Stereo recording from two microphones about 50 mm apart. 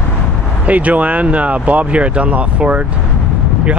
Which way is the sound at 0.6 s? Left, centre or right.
Right.